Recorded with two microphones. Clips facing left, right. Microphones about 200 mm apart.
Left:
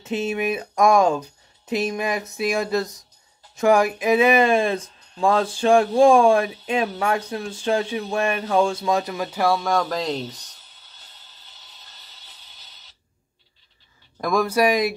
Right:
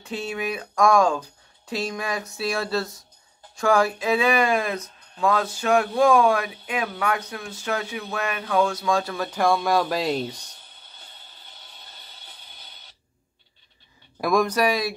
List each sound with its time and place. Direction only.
0.0 s speech: 20° left (ahead or behind); by 10.5 s 10° right (ahead or behind)
11.0 s music: 55° right (ahead or behind)
14.2 s speech: 5° left (ahead or behind)